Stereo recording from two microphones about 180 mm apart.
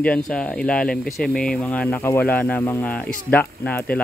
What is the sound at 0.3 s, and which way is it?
Speech, 5° left (ahead or behind).